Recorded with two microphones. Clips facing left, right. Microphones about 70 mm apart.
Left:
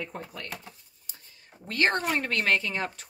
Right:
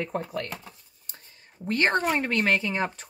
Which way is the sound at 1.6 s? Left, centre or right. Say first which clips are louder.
Right 2 dB; right.